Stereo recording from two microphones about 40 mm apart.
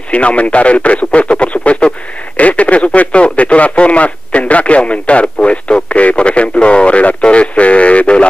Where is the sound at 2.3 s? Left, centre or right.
Left.